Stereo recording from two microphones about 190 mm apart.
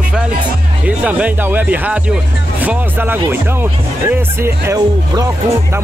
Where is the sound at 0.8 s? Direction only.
5° right (ahead or behind).